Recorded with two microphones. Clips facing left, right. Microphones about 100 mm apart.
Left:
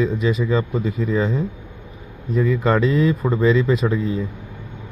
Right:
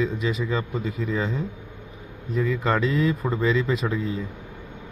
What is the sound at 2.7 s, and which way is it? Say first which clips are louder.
Speech: left 5 dB; 35° left (ahead or behind).